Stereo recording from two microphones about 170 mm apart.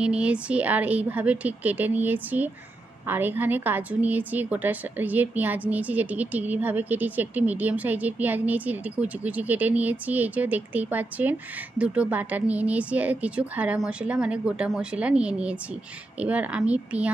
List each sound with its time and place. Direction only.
0.0 s a woman's voice: 5° right (ahead or behind)